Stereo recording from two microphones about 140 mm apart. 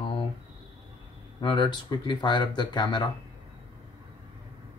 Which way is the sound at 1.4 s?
35° left (ahead or behind).